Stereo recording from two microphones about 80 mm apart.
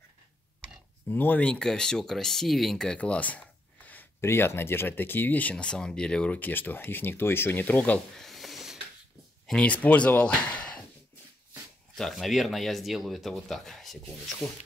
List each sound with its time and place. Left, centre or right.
1.0 s speech: left
8.2 s a sound: centre
9.5 s speech: centre
11.9 s speech: centre